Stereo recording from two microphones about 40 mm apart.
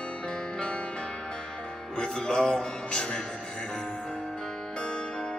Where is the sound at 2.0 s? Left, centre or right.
Left.